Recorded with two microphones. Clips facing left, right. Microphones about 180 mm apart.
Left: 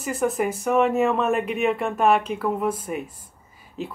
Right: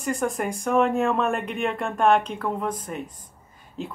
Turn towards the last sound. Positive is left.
turn(degrees=5)  # may be behind; listen again after turning